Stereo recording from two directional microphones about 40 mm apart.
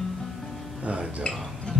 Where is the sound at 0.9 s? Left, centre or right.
Right.